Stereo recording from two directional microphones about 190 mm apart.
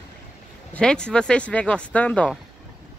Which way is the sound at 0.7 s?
5° left (ahead or behind).